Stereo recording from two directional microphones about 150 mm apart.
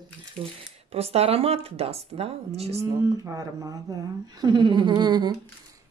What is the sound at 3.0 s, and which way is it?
A woman's voice, 20° right (ahead or behind).